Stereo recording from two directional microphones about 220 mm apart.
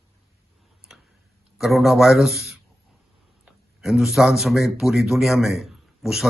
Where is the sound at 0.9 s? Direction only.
5° right (ahead or behind).